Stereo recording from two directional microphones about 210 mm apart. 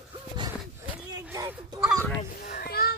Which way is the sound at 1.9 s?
5° left (ahead or behind).